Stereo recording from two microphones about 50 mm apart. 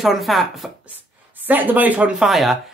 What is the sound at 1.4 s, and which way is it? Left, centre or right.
Speech, right.